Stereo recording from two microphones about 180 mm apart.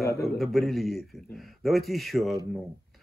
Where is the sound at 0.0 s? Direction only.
15° left (ahead or behind).